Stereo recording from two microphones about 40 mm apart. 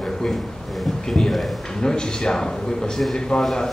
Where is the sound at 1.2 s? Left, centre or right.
Centre.